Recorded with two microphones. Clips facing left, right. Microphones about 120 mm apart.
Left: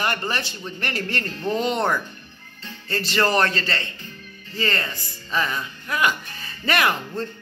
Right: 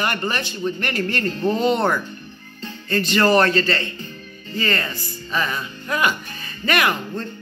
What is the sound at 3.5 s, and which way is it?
Speech, 25° left (ahead or behind).